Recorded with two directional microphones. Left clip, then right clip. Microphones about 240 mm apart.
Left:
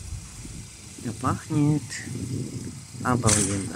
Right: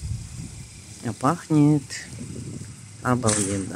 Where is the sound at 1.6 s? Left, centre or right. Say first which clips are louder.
Right 5 dB; centre.